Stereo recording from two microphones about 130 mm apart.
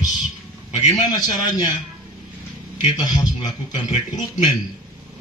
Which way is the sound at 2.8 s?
35° left (ahead or behind).